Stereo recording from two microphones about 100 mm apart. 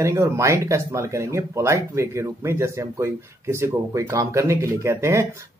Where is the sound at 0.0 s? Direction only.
30° right (ahead or behind).